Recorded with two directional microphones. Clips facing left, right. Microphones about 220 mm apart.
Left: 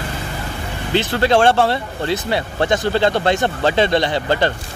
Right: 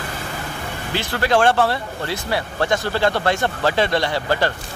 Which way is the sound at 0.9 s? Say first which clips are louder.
Left 4 dB; 25° left (ahead or behind).